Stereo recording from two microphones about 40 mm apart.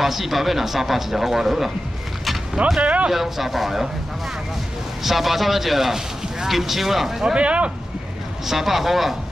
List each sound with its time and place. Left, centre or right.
0.0 s a man's voice: centre
2.8 s speech: right
3.1 s speech: centre
5.0 s a man's voice: centre
7.3 s speech: right
8.5 s a man's voice: centre